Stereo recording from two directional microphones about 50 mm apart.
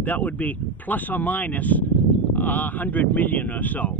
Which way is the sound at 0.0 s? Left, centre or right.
Left.